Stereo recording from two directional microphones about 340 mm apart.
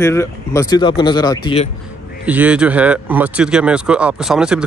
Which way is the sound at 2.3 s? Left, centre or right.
Centre.